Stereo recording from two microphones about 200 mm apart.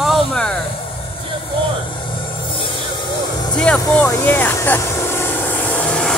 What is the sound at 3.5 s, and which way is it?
Speech, 5° left (ahead or behind).